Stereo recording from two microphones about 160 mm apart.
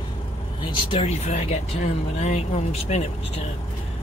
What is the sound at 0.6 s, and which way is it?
Speech, 30° left (ahead or behind).